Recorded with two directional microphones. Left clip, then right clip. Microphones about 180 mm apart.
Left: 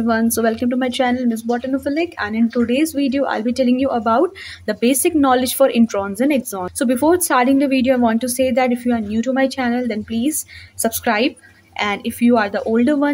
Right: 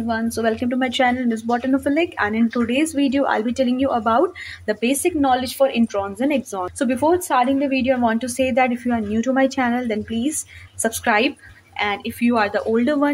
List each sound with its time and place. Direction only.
0.0 s speech: 35° left (ahead or behind)
0.5 s speech: 20° left (ahead or behind)
7.2 s a woman's voice: 35° left (ahead or behind)
11.8 s speech: 35° left (ahead or behind)